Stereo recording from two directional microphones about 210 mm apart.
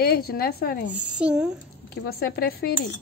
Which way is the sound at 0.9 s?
5° right (ahead or behind).